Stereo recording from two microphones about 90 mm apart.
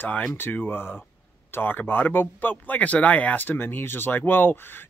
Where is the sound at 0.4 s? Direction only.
25° left (ahead or behind).